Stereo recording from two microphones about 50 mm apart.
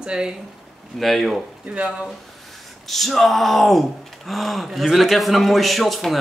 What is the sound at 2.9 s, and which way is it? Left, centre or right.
Speech, centre.